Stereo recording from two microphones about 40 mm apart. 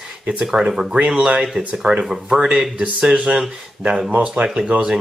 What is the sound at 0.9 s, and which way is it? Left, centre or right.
Speech, right.